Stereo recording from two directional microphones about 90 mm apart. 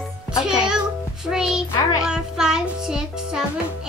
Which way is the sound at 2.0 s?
5° right (ahead or behind).